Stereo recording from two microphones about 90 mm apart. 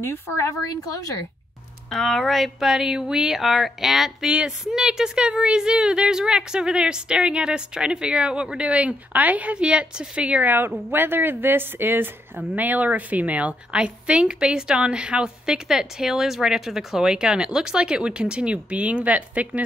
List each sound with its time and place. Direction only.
0.0 s speech: 30° left (ahead or behind)
1.9 s speech: 5° left (ahead or behind); by 19.6 s 15° right (ahead or behind)